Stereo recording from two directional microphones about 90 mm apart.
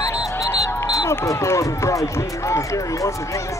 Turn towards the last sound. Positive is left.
turn(degrees=35)  # may be behind; listen again after turning